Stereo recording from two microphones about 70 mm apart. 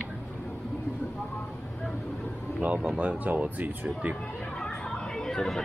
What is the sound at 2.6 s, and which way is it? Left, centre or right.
A man's voice, right.